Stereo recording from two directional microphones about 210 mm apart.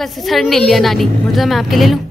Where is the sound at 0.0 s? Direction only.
Centre (ahead or behind).